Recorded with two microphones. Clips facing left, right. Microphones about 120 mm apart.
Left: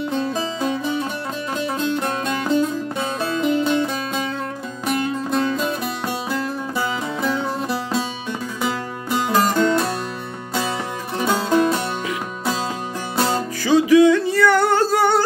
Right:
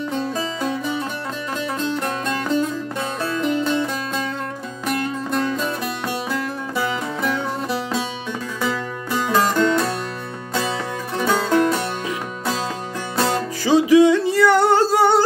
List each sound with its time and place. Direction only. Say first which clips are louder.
0.1 s music: left 1 dB; centre (ahead or behind)
11.1 s music: even; 10° left (ahead or behind)
13.7 s music: even; 25° right (ahead or behind)